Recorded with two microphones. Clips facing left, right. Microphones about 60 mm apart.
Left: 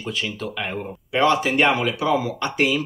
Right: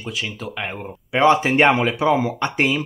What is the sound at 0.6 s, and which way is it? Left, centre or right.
Speech, right.